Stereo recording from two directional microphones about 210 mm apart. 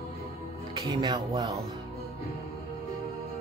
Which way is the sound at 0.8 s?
15° right (ahead or behind).